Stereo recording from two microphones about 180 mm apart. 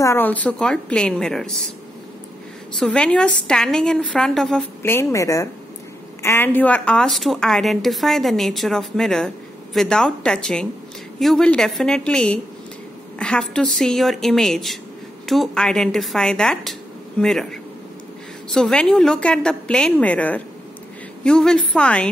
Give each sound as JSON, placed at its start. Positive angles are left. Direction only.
{"t": 0.0, "sound": "a woman's voice", "side_deg": 15}
{"t": 2.8, "sound": "a woman's voice", "side_deg": 5}